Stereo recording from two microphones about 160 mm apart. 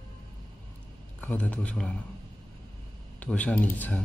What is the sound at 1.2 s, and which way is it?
Speech, 10° left (ahead or behind).